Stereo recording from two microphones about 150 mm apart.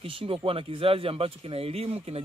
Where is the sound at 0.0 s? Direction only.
40° right (ahead or behind).